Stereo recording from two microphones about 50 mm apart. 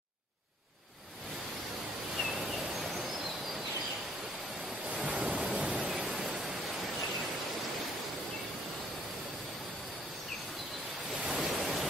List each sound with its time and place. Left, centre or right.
2.1 s a sound: centre
5.0 s waves: centre
6.1 s pink noise: centre
11.2 s waves: centre